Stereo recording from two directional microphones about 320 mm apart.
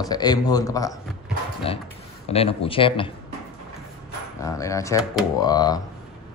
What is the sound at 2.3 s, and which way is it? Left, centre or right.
Speech, centre.